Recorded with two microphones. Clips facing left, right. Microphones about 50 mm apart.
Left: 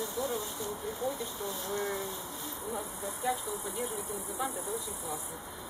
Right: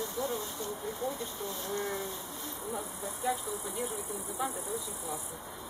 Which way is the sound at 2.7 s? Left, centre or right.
Centre.